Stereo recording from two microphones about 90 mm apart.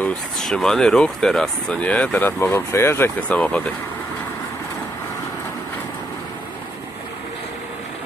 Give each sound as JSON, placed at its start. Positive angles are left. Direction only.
{"t": 0.5, "sound": "speech", "side_deg": 5}
{"t": 3.2, "sound": "speech", "side_deg": 15}